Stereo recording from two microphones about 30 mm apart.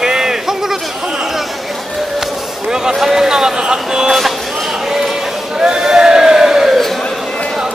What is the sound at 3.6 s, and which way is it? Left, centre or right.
Vehicle, right.